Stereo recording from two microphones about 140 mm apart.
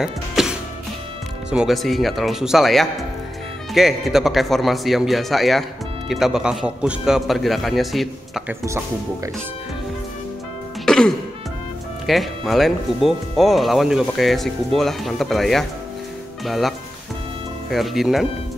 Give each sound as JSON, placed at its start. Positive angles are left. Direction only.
{"t": 0.4, "sound": "music", "side_deg": 0}
{"t": 1.5, "sound": "speech", "side_deg": -5}
{"t": 8.5, "sound": "speech", "side_deg": -20}
{"t": 10.9, "sound": "music", "side_deg": 5}
{"t": 12.1, "sound": "speech", "side_deg": 0}